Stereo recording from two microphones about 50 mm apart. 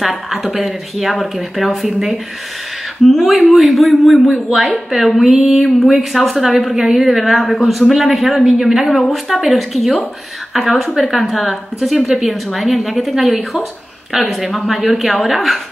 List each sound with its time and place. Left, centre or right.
0.0 s a woman's voice: centre